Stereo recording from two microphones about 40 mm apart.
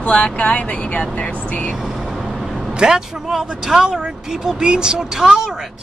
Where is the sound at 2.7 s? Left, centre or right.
Centre.